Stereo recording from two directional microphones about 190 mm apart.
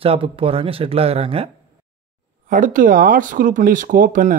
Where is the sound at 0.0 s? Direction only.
30° right (ahead or behind).